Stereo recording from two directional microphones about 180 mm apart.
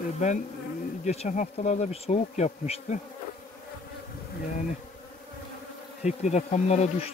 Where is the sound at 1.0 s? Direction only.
40° left (ahead or behind).